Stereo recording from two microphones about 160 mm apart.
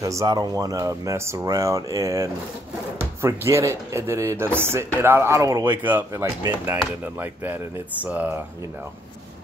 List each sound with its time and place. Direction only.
0.0 s speech: 20° right (ahead or behind)
5.9 s speech: 15° right (ahead or behind)